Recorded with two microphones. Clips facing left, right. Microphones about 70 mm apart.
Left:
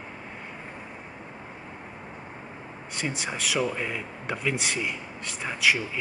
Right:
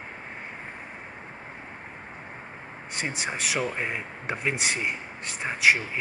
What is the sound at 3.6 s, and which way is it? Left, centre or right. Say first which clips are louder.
Speech: left 4 dB; right.